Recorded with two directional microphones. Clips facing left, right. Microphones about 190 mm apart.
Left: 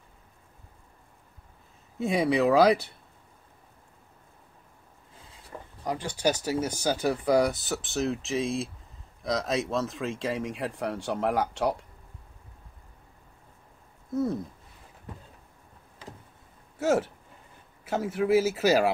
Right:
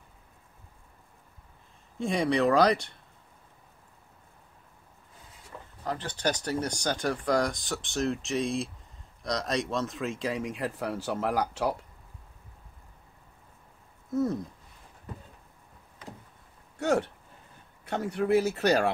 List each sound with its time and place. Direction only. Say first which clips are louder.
2.0 s speech: left 2 dB; 5° left (ahead or behind)
5.5 s a sound: left 3 dB; 25° left (ahead or behind)
5.9 s speech: left 3 dB; 10° left (ahead or behind)
14.1 s speech: even; centre (ahead or behind)
16.7 s speech: left 2 dB; centre (ahead or behind)